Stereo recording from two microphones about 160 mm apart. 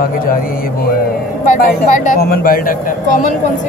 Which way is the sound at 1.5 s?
50° left (ahead or behind).